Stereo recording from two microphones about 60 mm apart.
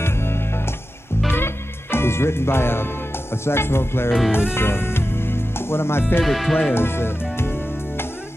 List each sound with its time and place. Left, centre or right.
0.0 s music: left
6.2 s speech: centre
6.7 s music: left